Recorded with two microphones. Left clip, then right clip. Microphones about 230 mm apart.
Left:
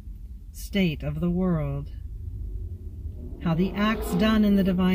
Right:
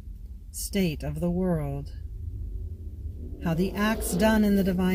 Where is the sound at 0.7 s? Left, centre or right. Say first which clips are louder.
Left 2 dB; centre.